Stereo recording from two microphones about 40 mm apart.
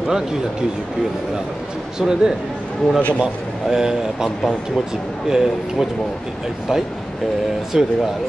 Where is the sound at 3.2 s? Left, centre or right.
Centre.